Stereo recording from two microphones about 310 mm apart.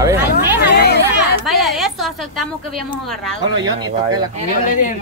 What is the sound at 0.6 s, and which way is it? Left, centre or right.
Chatter, left.